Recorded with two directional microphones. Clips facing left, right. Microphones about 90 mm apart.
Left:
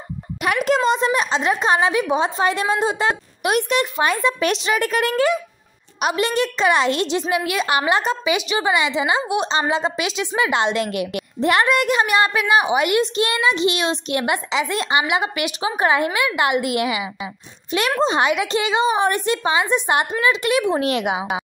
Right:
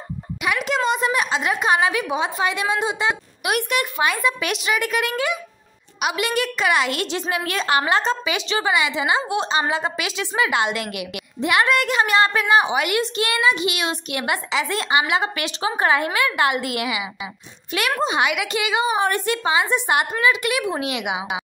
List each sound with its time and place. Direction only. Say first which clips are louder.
0.7 s a woman's voice: left 4 dB; 35° left (ahead or behind)
3.5 s a woman's voice: left 3 dB; 25° left (ahead or behind)
4.0 s a woman's voice: left 1 dB; 30° left (ahead or behind)
11.6 s a woman's voice: left 1 dB; 20° left (ahead or behind)
20.8 s a woman's voice: left 5 dB; 40° left (ahead or behind)